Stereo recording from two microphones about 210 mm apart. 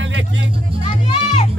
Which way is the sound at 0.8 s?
30° left (ahead or behind).